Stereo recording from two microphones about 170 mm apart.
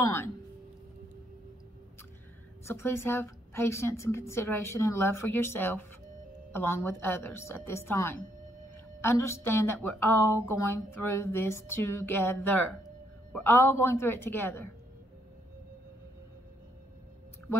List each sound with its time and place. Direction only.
0.0 s a woman's voice: 15° left (ahead or behind)
2.6 s a woman's voice: 15° left (ahead or behind)